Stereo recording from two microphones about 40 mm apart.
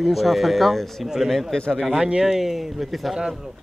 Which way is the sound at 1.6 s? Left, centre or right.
Centre.